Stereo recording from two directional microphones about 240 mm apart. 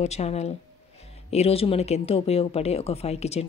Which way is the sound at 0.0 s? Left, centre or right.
Left.